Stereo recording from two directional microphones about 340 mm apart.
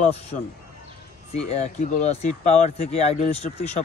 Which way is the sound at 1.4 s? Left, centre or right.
Centre.